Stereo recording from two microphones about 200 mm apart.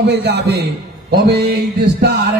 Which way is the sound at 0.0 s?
55° right (ahead or behind).